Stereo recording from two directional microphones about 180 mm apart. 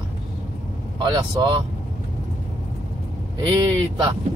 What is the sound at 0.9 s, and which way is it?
Speech, 25° right (ahead or behind).